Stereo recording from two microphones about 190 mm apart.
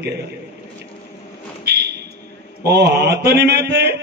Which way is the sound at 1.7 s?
60° right (ahead or behind).